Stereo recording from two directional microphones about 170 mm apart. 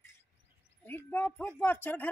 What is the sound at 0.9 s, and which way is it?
Speech, 10° left (ahead or behind).